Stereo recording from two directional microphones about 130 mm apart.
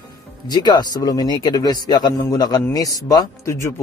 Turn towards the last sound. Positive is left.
turn(degrees=20)  # may be behind; listen again after turning